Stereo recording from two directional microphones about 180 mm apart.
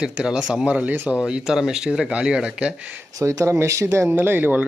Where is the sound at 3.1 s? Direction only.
20° right (ahead or behind).